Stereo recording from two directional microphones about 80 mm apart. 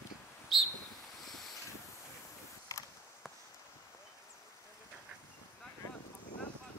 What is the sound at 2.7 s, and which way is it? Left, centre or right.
Creak, left.